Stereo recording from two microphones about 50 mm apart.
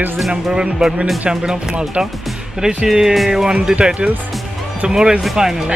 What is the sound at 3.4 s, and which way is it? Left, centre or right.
Speech, centre.